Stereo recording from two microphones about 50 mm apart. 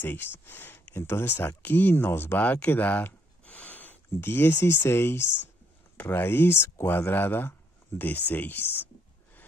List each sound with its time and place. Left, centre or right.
0.0 s speech: left
3.4 s a sound: left
4.1 s speech: left
7.1 s speech: left